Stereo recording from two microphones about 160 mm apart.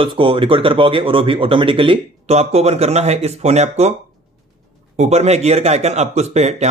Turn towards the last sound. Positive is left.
turn(degrees=-45)  # may be behind; listen again after turning